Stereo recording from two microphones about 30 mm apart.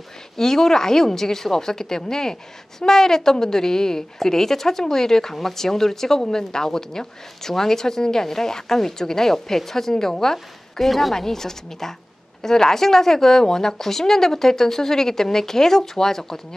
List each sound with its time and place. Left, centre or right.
0.4 s a woman's voice: centre